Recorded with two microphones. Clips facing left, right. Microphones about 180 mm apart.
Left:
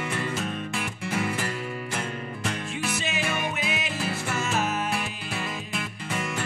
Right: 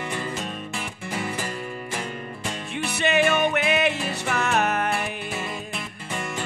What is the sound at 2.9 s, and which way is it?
Music, 65° right (ahead or behind).